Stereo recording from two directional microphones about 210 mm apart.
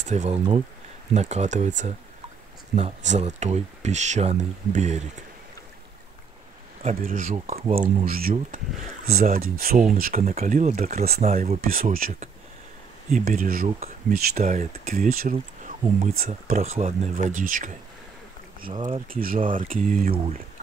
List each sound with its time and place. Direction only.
0.0 s speech: 35° right (ahead or behind)
6.8 s speech: 35° right (ahead or behind)
7.3 s speech: 25° right (ahead or behind)
7.7 s speech: 45° right (ahead or behind)
11.6 s speech: 45° right (ahead or behind)
14.4 s speech: 30° right (ahead or behind)
14.7 s speech: 45° right (ahead or behind)
15.3 s speech: 30° right (ahead or behind)
16.1 s speech: 45° right (ahead or behind)
18.7 s speech: 25° right (ahead or behind)
19.0 s speech: 45° right (ahead or behind)
19.8 s speech: 5° left (ahead or behind)